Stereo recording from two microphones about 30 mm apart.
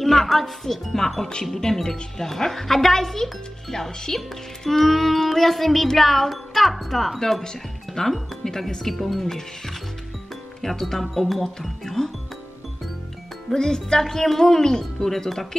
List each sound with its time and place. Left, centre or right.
0.0 s speech: centre
0.9 s a woman's voice: centre
8.9 s a woman's voice: centre
13.5 s a woman's voice: centre